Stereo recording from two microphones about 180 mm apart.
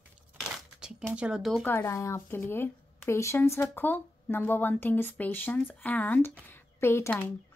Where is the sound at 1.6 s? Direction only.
15° left (ahead or behind).